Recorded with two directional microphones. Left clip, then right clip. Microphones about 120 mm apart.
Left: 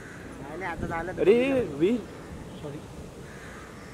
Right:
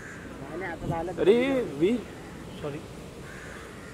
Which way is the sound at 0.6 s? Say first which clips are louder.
Even; 45° left (ahead or behind).